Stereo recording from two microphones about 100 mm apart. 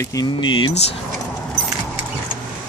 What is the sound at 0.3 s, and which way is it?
Speech, 55° left (ahead or behind).